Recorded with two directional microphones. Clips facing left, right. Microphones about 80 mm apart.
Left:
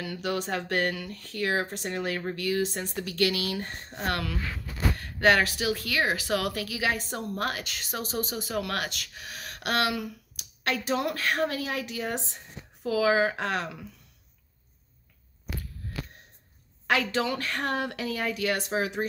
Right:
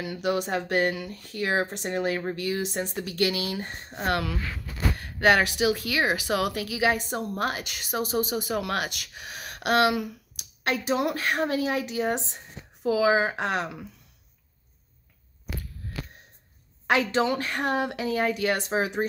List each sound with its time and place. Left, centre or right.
0.0 s speech: centre
16.8 s speech: right